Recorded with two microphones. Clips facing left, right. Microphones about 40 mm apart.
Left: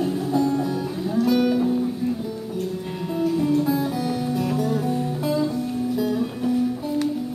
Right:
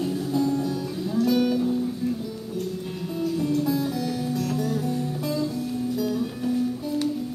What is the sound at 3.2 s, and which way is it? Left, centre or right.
Music, centre.